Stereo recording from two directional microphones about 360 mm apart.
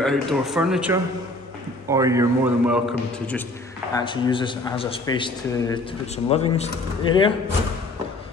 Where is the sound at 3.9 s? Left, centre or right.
Centre.